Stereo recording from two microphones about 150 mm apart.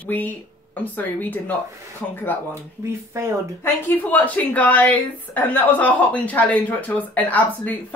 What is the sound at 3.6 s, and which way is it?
Speech, 15° left (ahead or behind).